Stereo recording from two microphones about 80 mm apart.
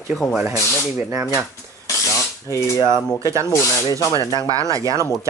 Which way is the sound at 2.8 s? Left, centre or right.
Right.